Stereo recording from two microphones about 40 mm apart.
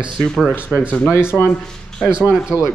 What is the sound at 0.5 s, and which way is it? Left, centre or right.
Speech, left.